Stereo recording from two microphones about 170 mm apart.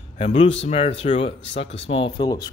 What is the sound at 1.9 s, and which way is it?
Speech, 30° left (ahead or behind).